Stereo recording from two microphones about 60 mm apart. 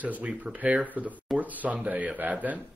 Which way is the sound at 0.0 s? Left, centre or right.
Right.